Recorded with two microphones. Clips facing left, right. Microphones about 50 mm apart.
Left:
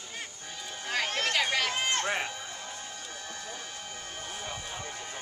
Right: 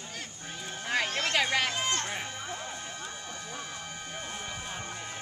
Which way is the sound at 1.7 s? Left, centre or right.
Left.